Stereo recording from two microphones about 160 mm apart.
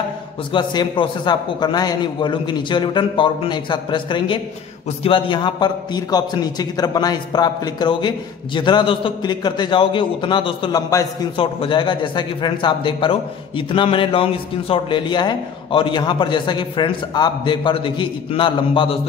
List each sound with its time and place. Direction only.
0.5 s a man's voice: 30° left (ahead or behind)